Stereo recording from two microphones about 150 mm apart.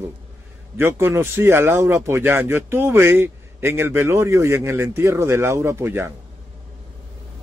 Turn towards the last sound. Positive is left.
turn(degrees=-15)  # may be behind; listen again after turning